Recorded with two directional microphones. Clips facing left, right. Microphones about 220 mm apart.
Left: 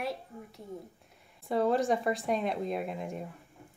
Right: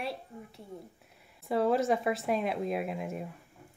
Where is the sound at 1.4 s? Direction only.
5° right (ahead or behind).